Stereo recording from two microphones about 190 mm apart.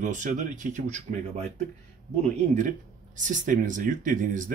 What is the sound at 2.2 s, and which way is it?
Speech, 40° right (ahead or behind).